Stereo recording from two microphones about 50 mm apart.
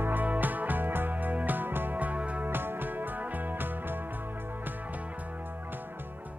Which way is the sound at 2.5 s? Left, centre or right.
Right.